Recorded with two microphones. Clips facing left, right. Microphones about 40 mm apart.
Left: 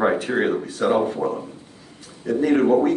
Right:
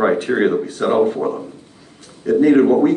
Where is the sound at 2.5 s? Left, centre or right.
Centre.